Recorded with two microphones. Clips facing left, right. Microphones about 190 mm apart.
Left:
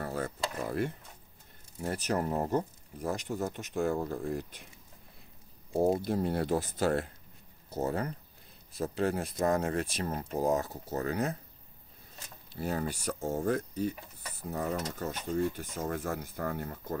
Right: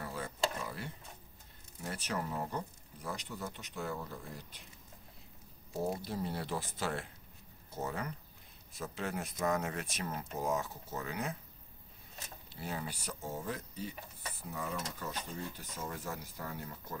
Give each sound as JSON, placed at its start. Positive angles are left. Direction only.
{"t": 0.0, "sound": "a sound", "side_deg": 45}
{"t": 1.8, "sound": "speech", "side_deg": 40}
{"t": 5.7, "sound": "speech", "side_deg": 55}
{"t": 12.5, "sound": "speech", "side_deg": 45}